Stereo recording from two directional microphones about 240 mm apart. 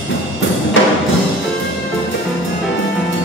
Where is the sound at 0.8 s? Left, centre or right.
Left.